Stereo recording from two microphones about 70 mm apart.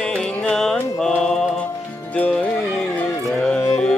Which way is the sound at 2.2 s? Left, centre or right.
Centre.